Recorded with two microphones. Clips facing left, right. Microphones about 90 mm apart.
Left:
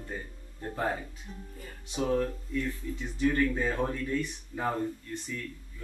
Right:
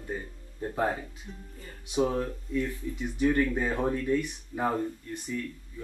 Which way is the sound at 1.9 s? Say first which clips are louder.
Right 1 dB; 20° right (ahead or behind).